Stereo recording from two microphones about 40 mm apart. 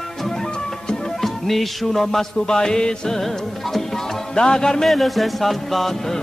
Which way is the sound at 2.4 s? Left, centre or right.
Centre.